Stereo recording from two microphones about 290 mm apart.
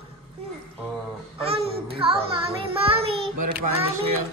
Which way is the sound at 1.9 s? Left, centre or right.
Centre.